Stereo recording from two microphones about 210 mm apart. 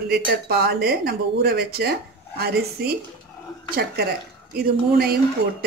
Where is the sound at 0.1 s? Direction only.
50° right (ahead or behind).